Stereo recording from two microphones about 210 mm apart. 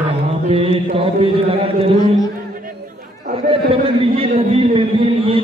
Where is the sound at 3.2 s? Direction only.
25° right (ahead or behind).